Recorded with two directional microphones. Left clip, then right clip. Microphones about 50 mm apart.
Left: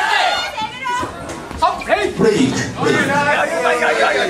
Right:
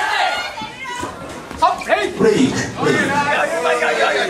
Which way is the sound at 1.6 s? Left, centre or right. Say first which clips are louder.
Even; centre.